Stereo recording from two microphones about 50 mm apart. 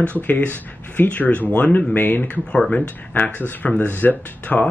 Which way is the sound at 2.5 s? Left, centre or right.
Left.